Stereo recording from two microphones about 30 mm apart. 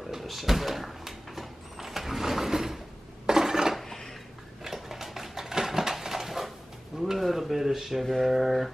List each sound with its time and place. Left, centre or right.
0.2 s door: centre
3.3 s dishes: right
4.6 s a sound: centre
7.2 s speech: centre